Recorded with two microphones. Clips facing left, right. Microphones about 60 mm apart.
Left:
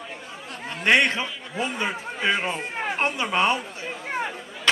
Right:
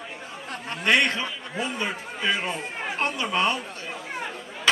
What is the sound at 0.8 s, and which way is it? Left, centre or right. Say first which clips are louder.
A man's voice: left 2 dB; left.